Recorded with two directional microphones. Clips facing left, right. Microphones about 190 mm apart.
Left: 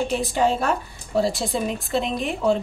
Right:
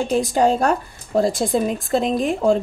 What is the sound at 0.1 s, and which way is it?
A woman's voice, 45° right (ahead or behind).